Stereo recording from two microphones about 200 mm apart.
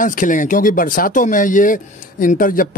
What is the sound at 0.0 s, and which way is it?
Speech, 40° left (ahead or behind).